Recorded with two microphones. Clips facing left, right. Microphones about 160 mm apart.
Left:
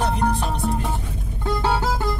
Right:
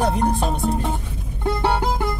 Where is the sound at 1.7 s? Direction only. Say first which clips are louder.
Right 1 dB; 15° right (ahead or behind).